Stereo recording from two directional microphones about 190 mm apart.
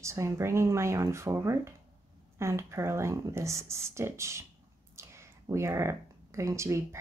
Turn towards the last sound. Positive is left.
turn(degrees=-15)  # may be behind; listen again after turning